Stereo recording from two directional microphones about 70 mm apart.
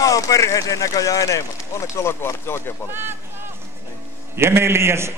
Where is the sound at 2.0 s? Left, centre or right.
Left.